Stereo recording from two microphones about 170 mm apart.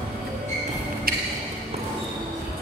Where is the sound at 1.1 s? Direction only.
60° right (ahead or behind).